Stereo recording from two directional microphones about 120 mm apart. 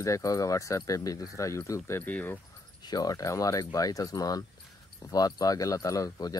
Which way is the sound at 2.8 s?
35° left (ahead or behind).